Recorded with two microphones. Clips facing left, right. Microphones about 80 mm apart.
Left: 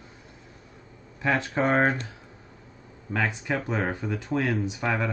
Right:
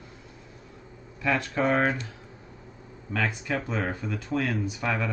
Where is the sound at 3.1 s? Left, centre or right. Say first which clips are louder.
Left 1 dB; centre.